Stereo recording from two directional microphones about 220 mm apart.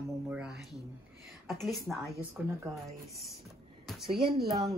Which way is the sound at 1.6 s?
Centre (ahead or behind).